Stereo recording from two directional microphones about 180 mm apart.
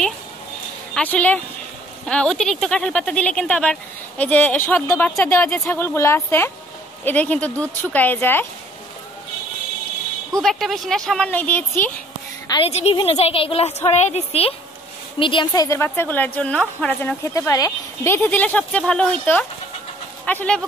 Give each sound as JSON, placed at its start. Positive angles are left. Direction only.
{"t": 0.9, "sound": "a woman's voice", "side_deg": 10}
{"t": 10.4, "sound": "speech", "side_deg": 0}
{"t": 12.4, "sound": "a woman's voice", "side_deg": 30}
{"t": 20.2, "sound": "a woman's voice", "side_deg": 10}